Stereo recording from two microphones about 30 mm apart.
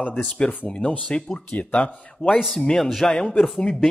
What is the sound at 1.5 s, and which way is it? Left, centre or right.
Speech, left.